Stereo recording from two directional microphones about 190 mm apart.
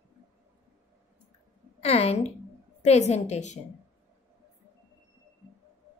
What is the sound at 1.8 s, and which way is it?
A woman's voice, 30° left (ahead or behind).